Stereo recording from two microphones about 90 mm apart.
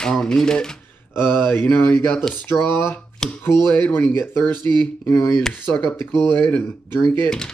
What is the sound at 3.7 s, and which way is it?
Speech, 20° left (ahead or behind).